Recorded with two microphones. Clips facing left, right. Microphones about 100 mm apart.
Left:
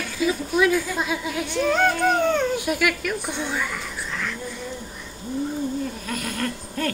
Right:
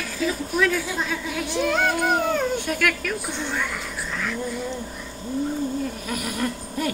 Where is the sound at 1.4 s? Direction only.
Centre (ahead or behind).